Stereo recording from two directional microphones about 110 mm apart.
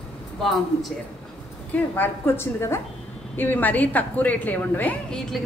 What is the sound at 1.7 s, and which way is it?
A woman's voice, 15° left (ahead or behind).